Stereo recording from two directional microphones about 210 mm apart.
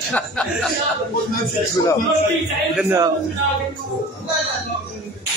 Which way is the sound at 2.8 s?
10° right (ahead or behind).